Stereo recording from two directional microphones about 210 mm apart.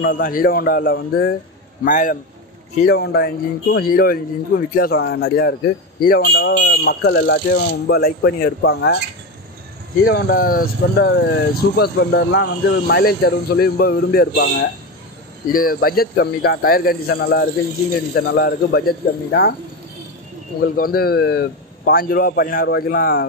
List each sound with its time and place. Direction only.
0.0 s speech: 40° left (ahead or behind)
1.9 s a man's voice: 35° left (ahead or behind)
2.8 s speech: 50° left (ahead or behind)
10.0 s speech: 45° left (ahead or behind)
15.5 s speech: 45° left (ahead or behind)
20.6 s speech: 45° left (ahead or behind)